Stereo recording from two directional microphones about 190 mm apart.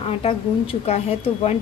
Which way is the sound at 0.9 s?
30° left (ahead or behind).